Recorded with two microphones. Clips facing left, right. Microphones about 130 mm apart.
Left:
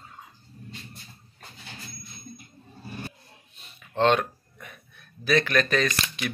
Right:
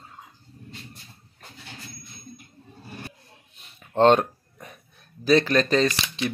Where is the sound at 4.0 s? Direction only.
40° right (ahead or behind).